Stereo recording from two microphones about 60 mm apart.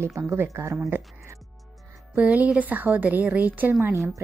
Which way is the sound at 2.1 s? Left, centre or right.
Right.